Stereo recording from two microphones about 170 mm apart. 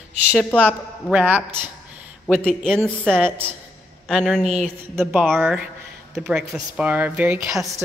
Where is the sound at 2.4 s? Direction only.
5° left (ahead or behind).